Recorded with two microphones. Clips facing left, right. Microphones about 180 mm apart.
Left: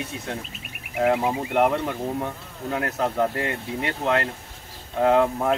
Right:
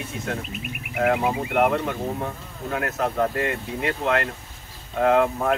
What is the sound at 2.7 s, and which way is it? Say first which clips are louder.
Speech: even; 25° left (ahead or behind).